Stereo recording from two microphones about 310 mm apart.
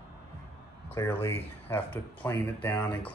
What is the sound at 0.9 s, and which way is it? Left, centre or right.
Speech, centre.